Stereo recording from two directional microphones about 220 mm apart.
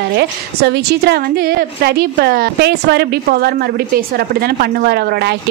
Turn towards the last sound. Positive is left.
turn(degrees=-50)  # may be behind; listen again after turning